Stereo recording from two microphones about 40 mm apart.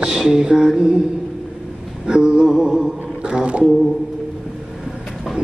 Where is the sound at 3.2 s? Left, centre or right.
Right.